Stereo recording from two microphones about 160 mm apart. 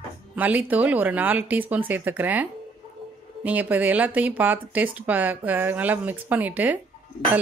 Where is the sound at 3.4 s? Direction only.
10° right (ahead or behind).